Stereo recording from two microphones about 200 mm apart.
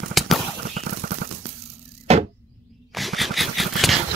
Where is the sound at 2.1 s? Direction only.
30° right (ahead or behind).